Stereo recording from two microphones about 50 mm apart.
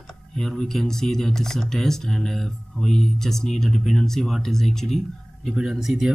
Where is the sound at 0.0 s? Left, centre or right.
Centre.